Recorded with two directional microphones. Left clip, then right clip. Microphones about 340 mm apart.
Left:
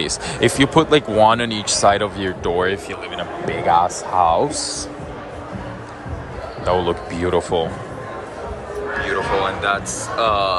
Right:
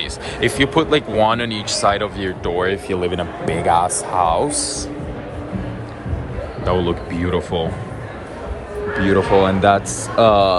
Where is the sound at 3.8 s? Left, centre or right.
Left.